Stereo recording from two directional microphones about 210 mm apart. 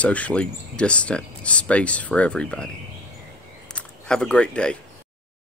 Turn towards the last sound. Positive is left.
turn(degrees=5)  # may be behind; listen again after turning